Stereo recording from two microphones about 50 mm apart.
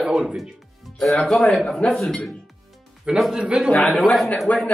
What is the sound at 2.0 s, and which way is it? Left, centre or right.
Speech, centre.